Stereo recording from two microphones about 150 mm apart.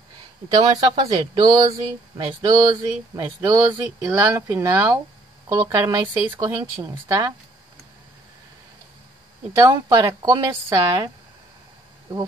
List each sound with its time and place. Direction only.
0.7 s speech: 30° right (ahead or behind)
1.7 s speech: 40° right (ahead or behind)
2.4 s speech: 25° right (ahead or behind)
9.6 s speech: 30° right (ahead or behind)